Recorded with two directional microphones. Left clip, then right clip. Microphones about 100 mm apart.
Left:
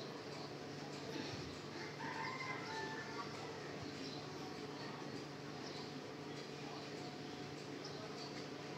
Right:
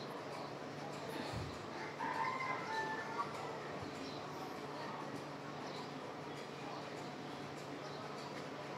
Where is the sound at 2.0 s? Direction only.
30° right (ahead or behind).